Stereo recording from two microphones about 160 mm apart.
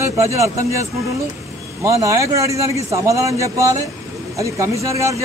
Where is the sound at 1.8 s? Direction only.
20° right (ahead or behind).